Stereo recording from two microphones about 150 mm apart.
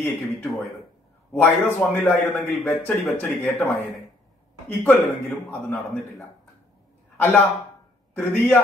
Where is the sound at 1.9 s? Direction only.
15° left (ahead or behind).